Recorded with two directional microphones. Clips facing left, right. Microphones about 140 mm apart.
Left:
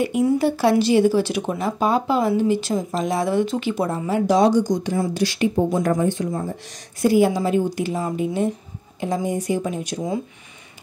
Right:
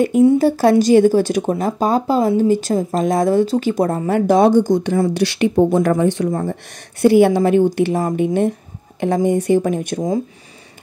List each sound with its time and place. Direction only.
0.4 s a woman's voice: 40° right (ahead or behind)